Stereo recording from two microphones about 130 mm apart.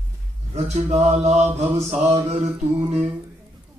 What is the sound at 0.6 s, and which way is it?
Mantra, 55° right (ahead or behind).